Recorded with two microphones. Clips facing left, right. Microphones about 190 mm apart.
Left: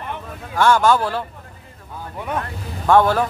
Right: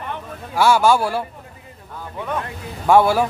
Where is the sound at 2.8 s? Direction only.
10° right (ahead or behind).